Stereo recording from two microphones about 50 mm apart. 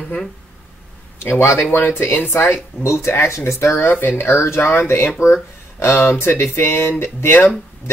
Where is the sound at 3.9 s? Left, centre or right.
Left.